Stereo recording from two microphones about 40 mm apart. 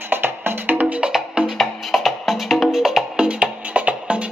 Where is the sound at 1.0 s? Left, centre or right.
Right.